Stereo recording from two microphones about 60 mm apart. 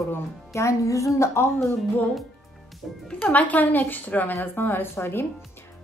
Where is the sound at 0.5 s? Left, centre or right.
Left.